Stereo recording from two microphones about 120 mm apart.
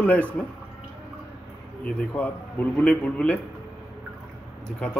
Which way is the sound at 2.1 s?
10° left (ahead or behind).